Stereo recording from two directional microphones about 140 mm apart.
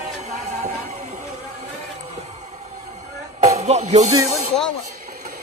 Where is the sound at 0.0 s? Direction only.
55° right (ahead or behind).